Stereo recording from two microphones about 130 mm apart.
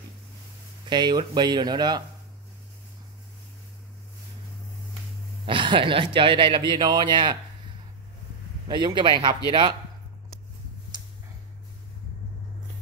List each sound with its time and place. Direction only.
0.8 s speech: 35° right (ahead or behind)
5.4 s speech: 40° right (ahead or behind)
8.6 s speech: 35° right (ahead or behind)